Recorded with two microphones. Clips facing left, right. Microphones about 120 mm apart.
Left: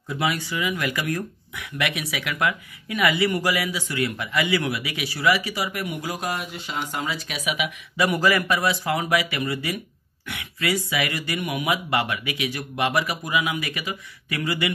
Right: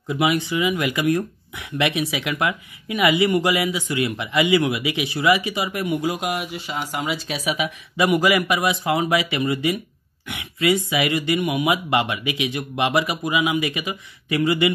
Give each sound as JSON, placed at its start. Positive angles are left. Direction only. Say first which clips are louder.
{"t": 0.1, "sound": "speech", "louder": "right 5 dB", "side_deg": -20}
{"t": 6.3, "sound": "speech", "louder": "right 3 dB", "side_deg": -5}
{"t": 7.1, "sound": "speech", "louder": "right 4 dB", "side_deg": -30}
{"t": 8.0, "sound": "speech", "louder": "right 3 dB", "side_deg": -15}